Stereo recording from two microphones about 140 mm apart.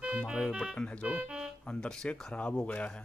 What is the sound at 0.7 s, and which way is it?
Speech, 10° left (ahead or behind).